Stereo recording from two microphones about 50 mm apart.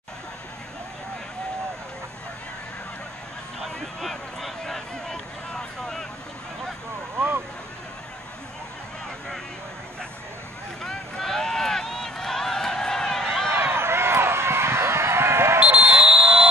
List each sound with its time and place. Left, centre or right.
3.6 s a sound: centre
7.2 s vehicle: right
10.8 s run: centre
13.5 s run: right
15.6 s basketball bounce: right